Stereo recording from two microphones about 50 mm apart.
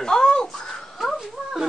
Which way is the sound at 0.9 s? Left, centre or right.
Centre.